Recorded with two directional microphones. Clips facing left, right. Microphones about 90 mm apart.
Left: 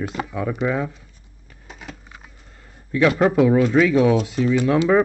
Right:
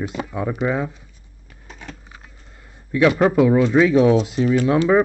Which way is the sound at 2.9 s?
5° right (ahead or behind).